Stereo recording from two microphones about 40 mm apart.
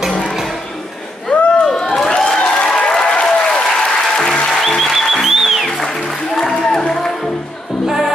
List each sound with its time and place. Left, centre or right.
1.6 s a sound: centre
2.4 s applause: centre
4.5 s music: centre
5.9 s music: centre
7.8 s music: centre